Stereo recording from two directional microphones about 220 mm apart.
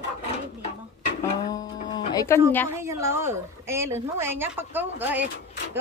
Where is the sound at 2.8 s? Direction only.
15° right (ahead or behind).